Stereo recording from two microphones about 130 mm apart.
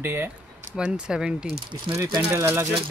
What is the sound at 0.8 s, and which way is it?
Speech, 5° right (ahead or behind).